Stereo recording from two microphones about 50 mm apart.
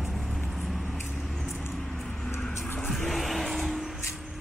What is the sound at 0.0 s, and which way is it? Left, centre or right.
Vehicle, centre.